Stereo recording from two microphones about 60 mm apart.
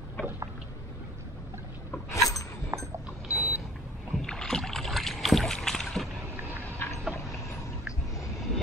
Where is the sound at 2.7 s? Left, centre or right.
Right.